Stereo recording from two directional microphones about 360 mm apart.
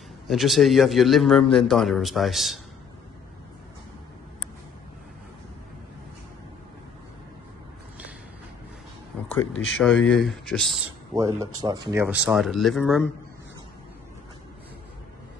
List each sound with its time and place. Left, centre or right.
0.3 s speech: centre
9.8 s speech: centre